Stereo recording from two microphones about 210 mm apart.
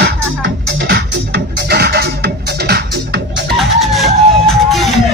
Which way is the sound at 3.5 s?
Centre (ahead or behind).